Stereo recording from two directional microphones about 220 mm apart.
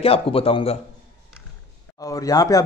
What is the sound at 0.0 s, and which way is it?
Speech, 25° left (ahead or behind).